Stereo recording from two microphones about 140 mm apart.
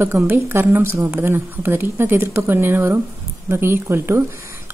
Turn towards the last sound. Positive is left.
turn(degrees=-20)  # may be behind; listen again after turning